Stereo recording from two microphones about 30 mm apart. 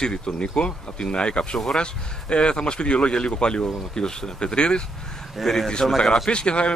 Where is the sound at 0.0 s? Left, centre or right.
Left.